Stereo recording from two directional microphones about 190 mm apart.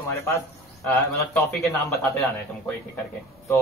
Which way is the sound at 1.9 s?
5° left (ahead or behind).